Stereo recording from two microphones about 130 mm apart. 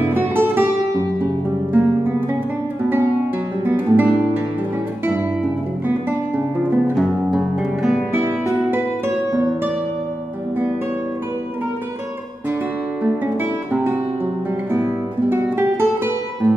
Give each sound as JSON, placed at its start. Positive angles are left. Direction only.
{"t": 0.1, "sound": "music", "side_deg": -15}
{"t": 1.7, "sound": "music", "side_deg": -15}
{"t": 3.6, "sound": "guitar", "side_deg": -15}
{"t": 7.0, "sound": "music", "side_deg": 0}
{"t": 8.1, "sound": "music", "side_deg": -20}
{"t": 14.7, "sound": "music", "side_deg": -20}